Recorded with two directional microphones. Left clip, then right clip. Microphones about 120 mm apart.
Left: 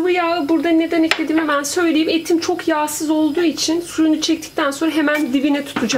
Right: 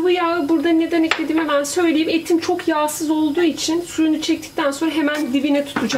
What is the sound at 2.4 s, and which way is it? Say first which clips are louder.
Speech: left 1 dB; 10° left (ahead or behind).